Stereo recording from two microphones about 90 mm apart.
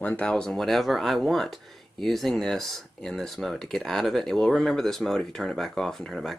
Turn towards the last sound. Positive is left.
turn(degrees=0)  # may be behind; listen again after turning